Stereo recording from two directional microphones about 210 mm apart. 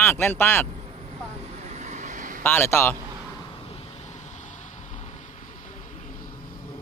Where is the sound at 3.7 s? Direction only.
35° left (ahead or behind).